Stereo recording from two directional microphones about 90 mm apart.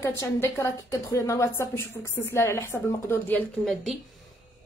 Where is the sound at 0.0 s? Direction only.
30° left (ahead or behind).